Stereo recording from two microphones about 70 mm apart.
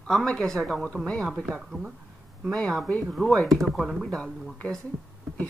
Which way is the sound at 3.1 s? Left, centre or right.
Centre.